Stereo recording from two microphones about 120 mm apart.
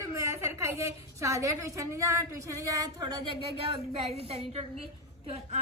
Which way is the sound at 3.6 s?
55° right (ahead or behind).